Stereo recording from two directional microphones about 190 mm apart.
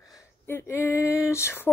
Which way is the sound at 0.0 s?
15° left (ahead or behind).